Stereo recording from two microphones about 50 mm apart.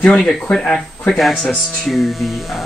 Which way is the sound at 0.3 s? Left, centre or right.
Centre.